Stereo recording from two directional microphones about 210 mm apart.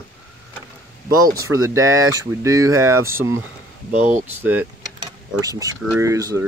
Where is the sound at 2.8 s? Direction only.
90° right.